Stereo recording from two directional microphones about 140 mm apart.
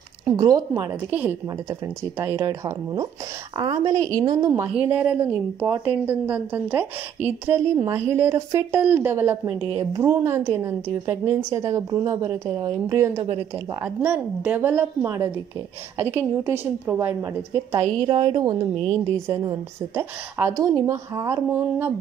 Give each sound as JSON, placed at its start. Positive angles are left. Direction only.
{"t": 0.2, "sound": "a woman's voice", "side_deg": -30}
{"t": 2.4, "sound": "a woman's voice", "side_deg": -25}
{"t": 4.5, "sound": "a woman's voice", "side_deg": -15}
{"t": 14.0, "sound": "a woman's voice", "side_deg": -10}
{"t": 18.0, "sound": "a woman's voice", "side_deg": -40}
{"t": 19.2, "sound": "a woman's voice", "side_deg": -20}